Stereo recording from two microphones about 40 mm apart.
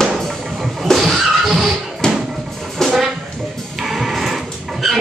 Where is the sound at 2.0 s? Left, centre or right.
Centre.